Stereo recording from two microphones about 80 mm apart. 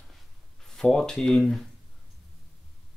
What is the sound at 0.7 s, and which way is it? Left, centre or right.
Speech, centre.